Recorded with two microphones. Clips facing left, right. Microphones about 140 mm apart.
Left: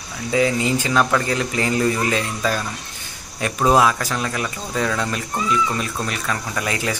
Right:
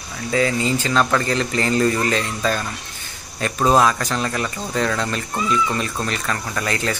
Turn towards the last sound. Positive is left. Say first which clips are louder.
# right 1 dB
turn(degrees=10)  # may be behind; listen again after turning